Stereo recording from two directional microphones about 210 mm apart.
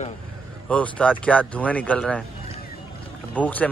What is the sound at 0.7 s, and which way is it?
A man's voice, 5° left (ahead or behind).